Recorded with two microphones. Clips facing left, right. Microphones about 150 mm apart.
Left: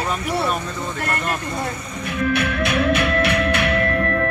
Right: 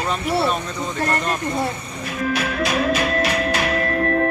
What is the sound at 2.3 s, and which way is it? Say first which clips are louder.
Music: even; 60° left (ahead or behind).